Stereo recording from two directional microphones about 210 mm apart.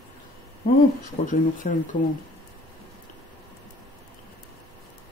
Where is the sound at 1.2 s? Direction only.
30° left (ahead or behind).